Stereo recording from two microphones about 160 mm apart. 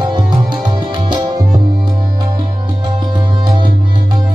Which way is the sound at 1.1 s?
25° right (ahead or behind).